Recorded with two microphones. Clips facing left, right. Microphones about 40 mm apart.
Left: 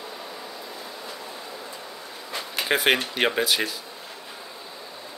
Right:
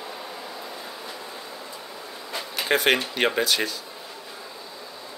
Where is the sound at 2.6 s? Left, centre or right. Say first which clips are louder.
Right 1 dB; centre.